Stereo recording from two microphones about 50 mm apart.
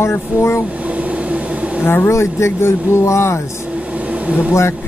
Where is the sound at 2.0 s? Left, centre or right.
Left.